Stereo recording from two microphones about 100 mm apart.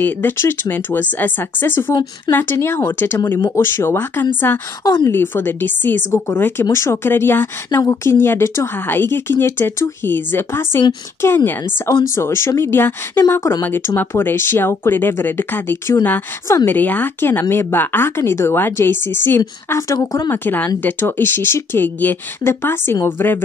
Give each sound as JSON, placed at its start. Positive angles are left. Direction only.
{"t": 0.0, "sound": "speech", "side_deg": 20}
{"t": 20.2, "sound": "speech", "side_deg": 20}